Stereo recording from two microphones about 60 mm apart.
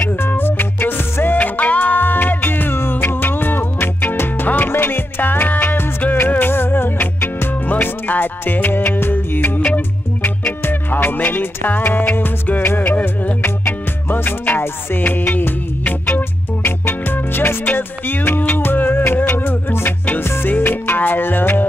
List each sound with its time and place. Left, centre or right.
0.0 s music: left